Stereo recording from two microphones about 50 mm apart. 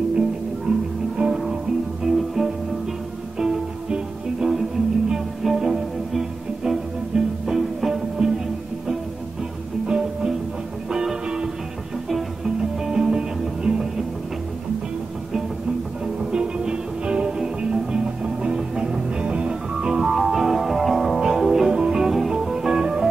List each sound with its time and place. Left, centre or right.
0.7 s music: centre
9.8 s music: centre
12.1 s music: centre
12.5 s music: centre
16.3 s music: centre